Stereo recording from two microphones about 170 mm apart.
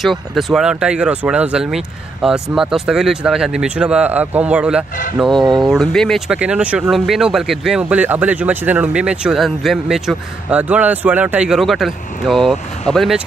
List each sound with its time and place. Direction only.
0.0 s speech: centre (ahead or behind)